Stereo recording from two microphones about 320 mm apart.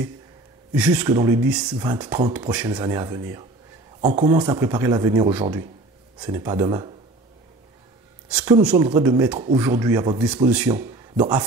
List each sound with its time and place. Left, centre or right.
0.7 s speech: centre
4.0 s speech: right
4.3 s speech: centre
8.3 s speech: centre